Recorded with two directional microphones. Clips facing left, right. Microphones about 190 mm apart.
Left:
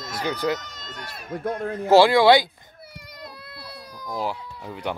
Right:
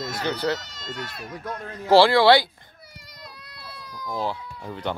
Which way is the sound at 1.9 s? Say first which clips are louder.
Left 1 dB; 15° left (ahead or behind).